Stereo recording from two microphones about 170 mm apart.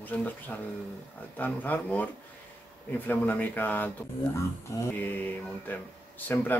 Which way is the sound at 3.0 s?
10° left (ahead or behind).